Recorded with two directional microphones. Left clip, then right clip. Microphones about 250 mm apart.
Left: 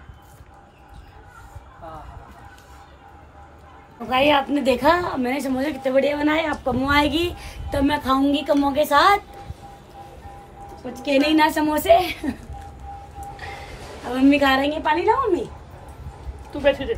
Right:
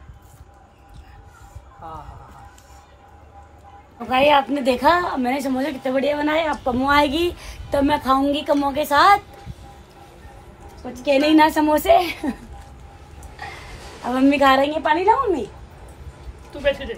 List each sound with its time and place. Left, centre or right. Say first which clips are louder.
4.1 s a woman's voice: right 2 dB; centre
10.9 s a woman's voice: right 3 dB; centre
14.0 s a woman's voice: right 2 dB; centre
16.6 s a woman's voice: left 2 dB; left